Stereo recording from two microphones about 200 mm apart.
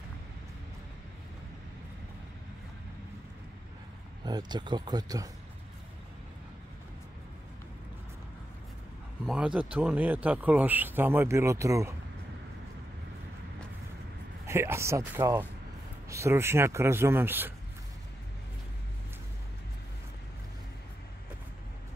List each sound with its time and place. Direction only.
4.2 s speech: 20° right (ahead or behind)
9.2 s speech: 5° right (ahead or behind)
14.4 s speech: 15° right (ahead or behind)